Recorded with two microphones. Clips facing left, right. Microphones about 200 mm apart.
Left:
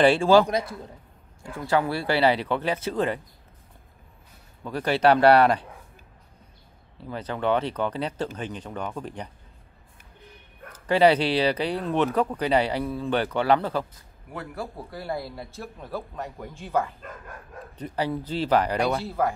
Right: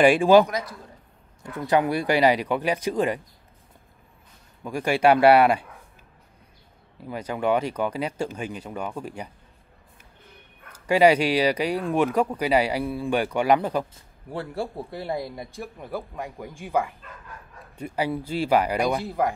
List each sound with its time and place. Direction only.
0.0 s speech: 15° right (ahead or behind)
0.5 s a man's voice: 30° left (ahead or behind)
1.4 s speech: 20° right (ahead or behind)
4.6 s speech: 10° right (ahead or behind)
7.1 s speech: 10° right (ahead or behind)
10.7 s speech: 10° right (ahead or behind)
13.9 s speech: 30° right (ahead or behind)